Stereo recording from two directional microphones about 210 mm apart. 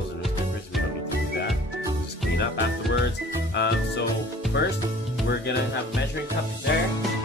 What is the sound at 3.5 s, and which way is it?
Music, 55° left (ahead or behind).